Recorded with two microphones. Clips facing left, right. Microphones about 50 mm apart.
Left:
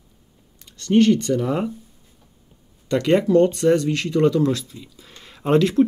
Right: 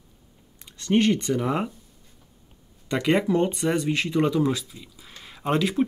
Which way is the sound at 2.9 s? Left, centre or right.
Centre.